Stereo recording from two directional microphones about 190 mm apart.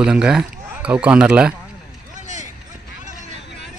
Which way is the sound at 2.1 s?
40° right (ahead or behind).